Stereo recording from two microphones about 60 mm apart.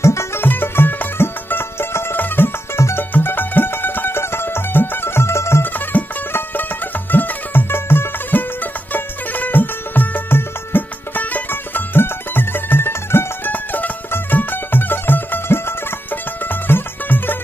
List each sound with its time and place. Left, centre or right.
0.0 s music: left
0.4 s music: left
5.7 s music: left